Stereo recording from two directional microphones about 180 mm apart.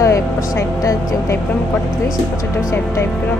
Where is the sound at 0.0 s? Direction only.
15° left (ahead or behind).